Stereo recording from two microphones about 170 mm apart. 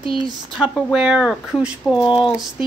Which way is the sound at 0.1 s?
5° left (ahead or behind).